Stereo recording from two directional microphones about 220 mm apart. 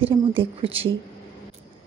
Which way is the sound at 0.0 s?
25° right (ahead or behind).